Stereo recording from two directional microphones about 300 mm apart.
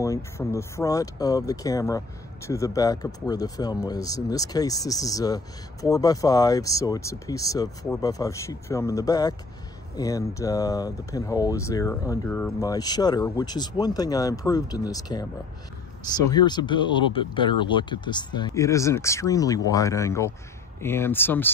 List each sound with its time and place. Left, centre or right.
0.0 s speech: centre
16.3 s speech: centre